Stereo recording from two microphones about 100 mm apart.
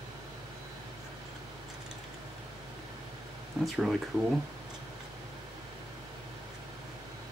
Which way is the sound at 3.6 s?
Centre (ahead or behind).